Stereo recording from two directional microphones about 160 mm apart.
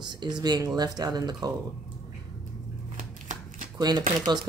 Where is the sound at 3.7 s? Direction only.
25° right (ahead or behind).